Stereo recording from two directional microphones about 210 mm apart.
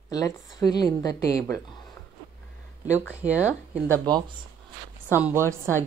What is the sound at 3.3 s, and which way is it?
Speech, 5° right (ahead or behind).